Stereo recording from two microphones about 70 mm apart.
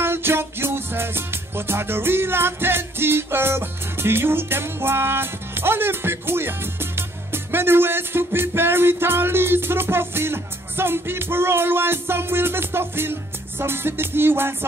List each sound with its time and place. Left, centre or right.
0.0 s music: right